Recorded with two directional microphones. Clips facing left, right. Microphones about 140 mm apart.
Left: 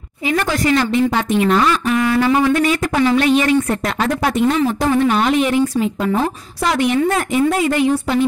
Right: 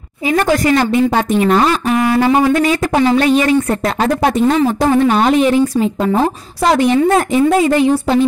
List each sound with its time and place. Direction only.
0.3 s a woman's voice: 40° right (ahead or behind)